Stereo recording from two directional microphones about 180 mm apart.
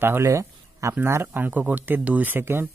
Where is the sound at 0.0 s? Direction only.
15° right (ahead or behind).